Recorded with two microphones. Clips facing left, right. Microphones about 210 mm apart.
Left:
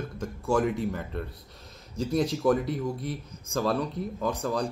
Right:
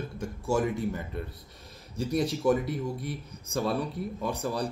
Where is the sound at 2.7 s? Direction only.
20° left (ahead or behind).